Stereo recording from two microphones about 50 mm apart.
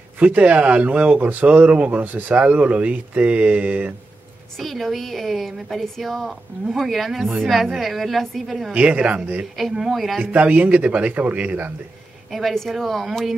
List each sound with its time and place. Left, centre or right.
0.2 s speech: right
2.4 s speech: right
4.6 s a woman's voice: centre
8.7 s speech: right
9.6 s a woman's voice: centre
10.3 s speech: right
12.3 s a woman's voice: centre